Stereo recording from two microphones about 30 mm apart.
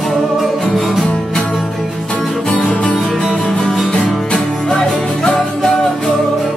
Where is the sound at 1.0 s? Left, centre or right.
Left.